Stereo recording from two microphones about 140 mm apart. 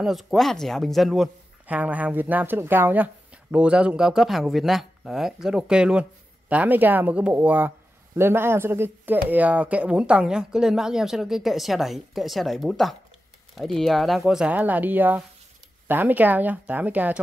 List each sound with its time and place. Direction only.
0.0 s speech: centre (ahead or behind)